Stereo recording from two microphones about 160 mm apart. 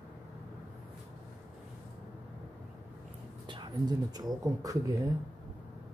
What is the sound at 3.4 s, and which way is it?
Speech, 30° right (ahead or behind).